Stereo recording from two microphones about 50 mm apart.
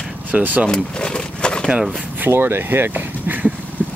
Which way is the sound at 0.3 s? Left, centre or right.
Right.